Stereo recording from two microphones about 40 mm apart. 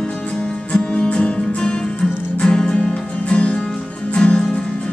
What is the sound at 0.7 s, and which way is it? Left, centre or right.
Music, left.